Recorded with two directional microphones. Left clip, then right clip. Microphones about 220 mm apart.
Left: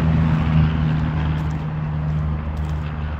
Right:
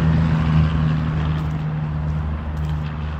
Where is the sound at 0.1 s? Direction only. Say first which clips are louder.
Even; 40° right (ahead or behind).